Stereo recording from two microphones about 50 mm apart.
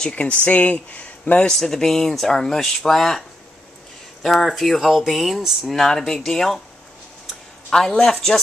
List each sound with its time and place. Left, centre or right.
0.1 s speech: left
1.5 s speech: centre
5.7 s speech: centre
7.7 s speech: centre